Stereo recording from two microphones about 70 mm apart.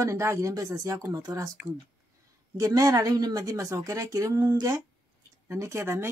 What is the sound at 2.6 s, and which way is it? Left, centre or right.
Speech, right.